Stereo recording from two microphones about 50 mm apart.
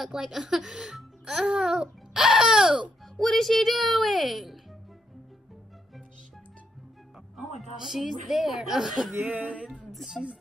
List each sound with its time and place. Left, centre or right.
0.0 s speech: centre
3.2 s speech: centre
7.3 s speech: centre
9.2 s a sound: right
9.8 s a woman's voice: centre